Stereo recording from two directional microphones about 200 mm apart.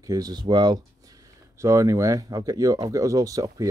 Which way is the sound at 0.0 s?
20° right (ahead or behind).